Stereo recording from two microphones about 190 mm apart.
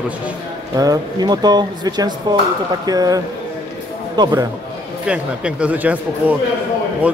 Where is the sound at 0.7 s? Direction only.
20° right (ahead or behind).